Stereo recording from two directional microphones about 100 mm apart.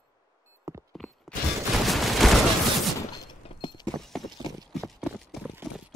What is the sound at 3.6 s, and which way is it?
Clip-clop, 50° left (ahead or behind).